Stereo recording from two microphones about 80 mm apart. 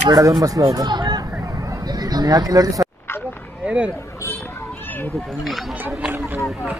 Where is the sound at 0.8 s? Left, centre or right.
Right.